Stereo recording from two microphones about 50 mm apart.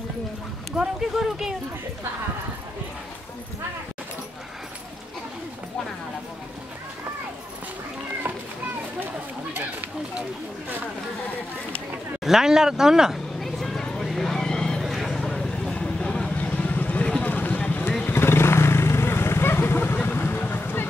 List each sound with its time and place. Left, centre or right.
0.7 s speech: centre
12.3 s speech: centre
13.4 s vehicle: centre
14.4 s a sound: centre
14.9 s a sound: centre
15.1 s vehicle: centre
15.7 s vehicle: centre
16.3 s vehicle: left
17.2 s a sound: left
18.0 s vehicle: left